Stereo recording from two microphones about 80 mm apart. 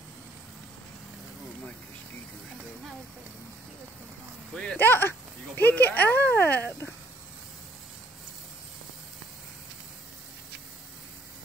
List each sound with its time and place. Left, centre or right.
4.7 s speech: left